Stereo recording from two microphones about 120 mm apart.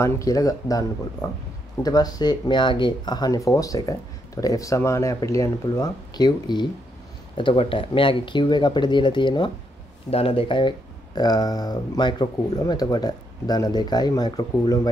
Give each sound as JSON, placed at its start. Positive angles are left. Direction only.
{"t": 0.0, "sound": "speech", "side_deg": 25}
{"t": 10.1, "sound": "speech", "side_deg": 50}
{"t": 11.1, "sound": "speech", "side_deg": 35}